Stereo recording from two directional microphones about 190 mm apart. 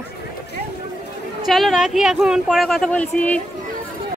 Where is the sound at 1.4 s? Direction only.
Centre (ahead or behind).